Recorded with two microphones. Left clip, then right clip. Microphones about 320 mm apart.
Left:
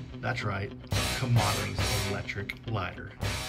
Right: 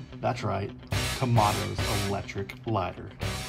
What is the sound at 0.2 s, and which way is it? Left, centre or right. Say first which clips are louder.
Speech: right 3 dB; centre.